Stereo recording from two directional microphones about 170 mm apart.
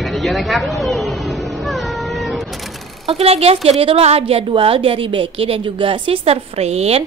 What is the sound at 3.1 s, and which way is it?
A woman's voice, 35° right (ahead or behind).